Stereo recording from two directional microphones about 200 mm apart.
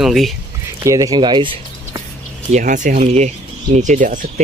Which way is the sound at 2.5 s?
40° right (ahead or behind).